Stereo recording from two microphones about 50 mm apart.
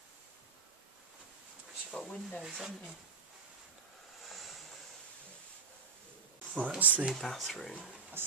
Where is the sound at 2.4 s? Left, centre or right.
Centre.